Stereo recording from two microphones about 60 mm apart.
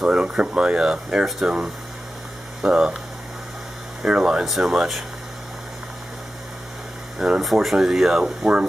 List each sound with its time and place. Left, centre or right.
0.0 s speech: centre
4.0 s speech: centre
7.2 s speech: centre